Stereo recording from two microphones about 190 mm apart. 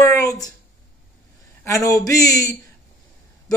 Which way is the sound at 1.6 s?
15° left (ahead or behind).